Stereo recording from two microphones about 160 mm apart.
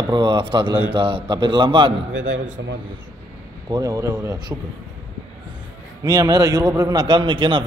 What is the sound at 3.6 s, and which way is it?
Speech, 25° right (ahead or behind).